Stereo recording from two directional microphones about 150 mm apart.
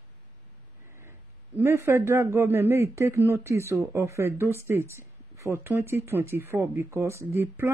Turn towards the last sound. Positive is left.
turn(degrees=-15)  # may be behind; listen again after turning